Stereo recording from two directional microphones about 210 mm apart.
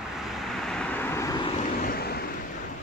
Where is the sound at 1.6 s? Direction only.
40° left (ahead or behind).